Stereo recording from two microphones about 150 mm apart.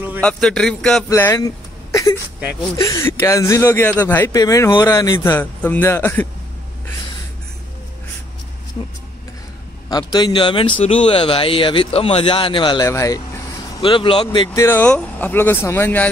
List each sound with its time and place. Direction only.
0.2 s a man's voice: 5° left (ahead or behind)
1.0 s a sound: 20° left (ahead or behind)
2.8 s a man's voice: 25° left (ahead or behind)
4.3 s a man's voice: 25° left (ahead or behind)
9.8 s speech: 30° left (ahead or behind)
12.8 s speech: 20° left (ahead or behind)
13.8 s speech: 35° left (ahead or behind)
14.6 s a man's voice: 15° left (ahead or behind)